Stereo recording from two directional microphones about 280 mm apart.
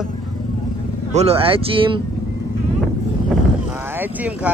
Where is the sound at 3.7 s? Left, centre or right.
Centre.